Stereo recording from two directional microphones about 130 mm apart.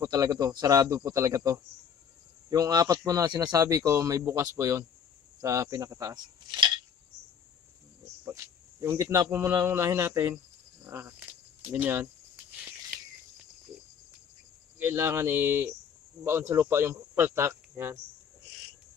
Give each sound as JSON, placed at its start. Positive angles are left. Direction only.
{"t": 0.0, "sound": "a man's voice", "side_deg": -25}
{"t": 8.3, "sound": "speech", "side_deg": -20}
{"t": 14.8, "sound": "a man's voice", "side_deg": -20}